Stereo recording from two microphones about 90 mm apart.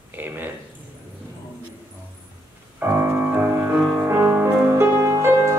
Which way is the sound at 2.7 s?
20° right (ahead or behind).